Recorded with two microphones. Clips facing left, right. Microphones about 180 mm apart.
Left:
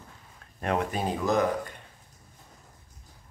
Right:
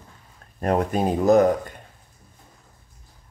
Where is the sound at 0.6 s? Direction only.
40° right (ahead or behind).